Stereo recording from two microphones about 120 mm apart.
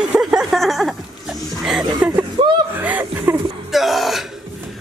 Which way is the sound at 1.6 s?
5° right (ahead or behind).